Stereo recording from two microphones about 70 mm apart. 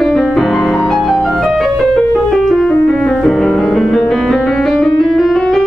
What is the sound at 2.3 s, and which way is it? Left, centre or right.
Music, centre.